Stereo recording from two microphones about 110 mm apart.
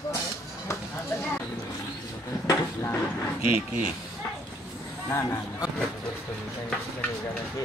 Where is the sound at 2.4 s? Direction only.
25° left (ahead or behind).